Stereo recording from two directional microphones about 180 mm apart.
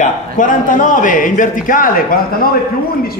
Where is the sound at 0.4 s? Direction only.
45° left (ahead or behind).